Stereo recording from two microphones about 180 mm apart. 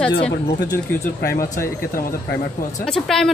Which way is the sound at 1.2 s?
55° left (ahead or behind).